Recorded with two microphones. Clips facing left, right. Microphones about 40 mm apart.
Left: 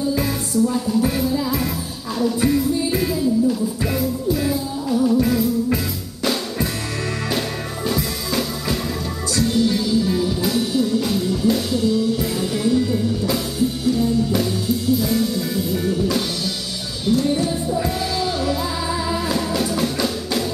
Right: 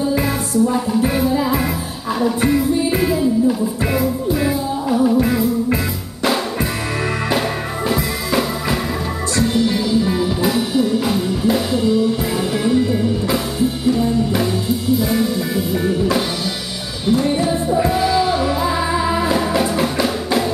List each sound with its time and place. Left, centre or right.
0.7 s music: right
7.9 s music: right